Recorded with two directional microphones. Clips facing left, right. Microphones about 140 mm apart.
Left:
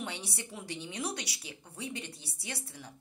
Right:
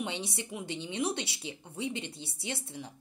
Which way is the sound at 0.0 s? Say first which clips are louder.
Right 4 dB; 20° right (ahead or behind).